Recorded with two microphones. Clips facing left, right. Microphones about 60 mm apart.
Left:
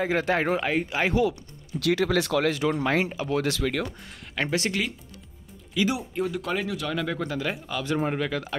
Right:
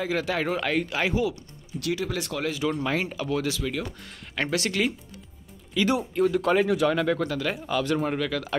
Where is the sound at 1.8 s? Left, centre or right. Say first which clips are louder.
Left 5 dB; left.